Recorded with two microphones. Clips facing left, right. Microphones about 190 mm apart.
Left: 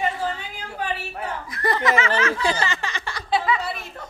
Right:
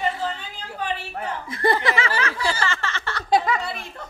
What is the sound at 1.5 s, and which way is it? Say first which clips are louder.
Snicker: right 1 dB; 30° right (ahead or behind).